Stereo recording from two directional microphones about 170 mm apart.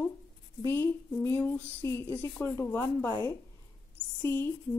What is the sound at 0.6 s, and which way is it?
A woman's voice, 15° left (ahead or behind).